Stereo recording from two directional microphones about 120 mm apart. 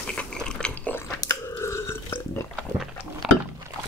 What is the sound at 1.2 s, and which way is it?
Chewing, 25° left (ahead or behind).